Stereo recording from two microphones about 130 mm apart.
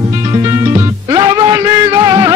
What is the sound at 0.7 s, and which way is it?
Music, 30° right (ahead or behind).